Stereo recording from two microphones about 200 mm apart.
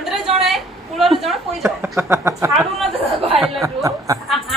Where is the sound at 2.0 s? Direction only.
15° right (ahead or behind).